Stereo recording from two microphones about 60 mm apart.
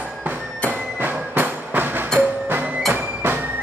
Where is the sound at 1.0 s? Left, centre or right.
Right.